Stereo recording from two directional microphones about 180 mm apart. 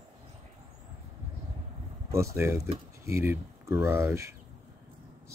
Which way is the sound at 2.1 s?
15° right (ahead or behind).